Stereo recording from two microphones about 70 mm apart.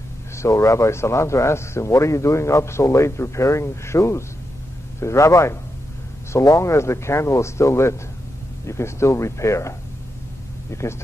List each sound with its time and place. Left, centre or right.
0.4 s speech: left